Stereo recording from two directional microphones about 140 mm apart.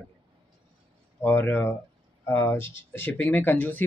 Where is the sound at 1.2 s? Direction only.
15° left (ahead or behind).